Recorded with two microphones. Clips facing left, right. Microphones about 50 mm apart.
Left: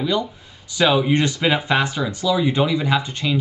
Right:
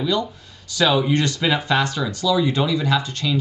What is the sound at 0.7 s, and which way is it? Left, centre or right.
Speech, centre.